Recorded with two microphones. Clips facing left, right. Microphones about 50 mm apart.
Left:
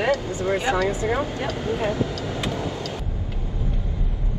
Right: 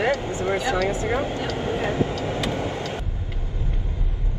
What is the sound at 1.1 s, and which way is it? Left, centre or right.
Speech, right.